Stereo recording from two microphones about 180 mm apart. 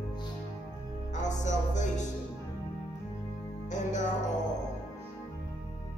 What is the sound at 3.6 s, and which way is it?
Music, 40° left (ahead or behind).